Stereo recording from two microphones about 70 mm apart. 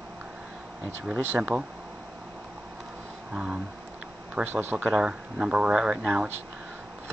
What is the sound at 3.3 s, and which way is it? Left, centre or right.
Speech, centre.